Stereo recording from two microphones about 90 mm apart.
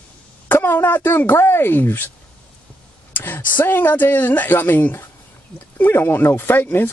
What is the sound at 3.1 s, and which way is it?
Speech, 20° left (ahead or behind).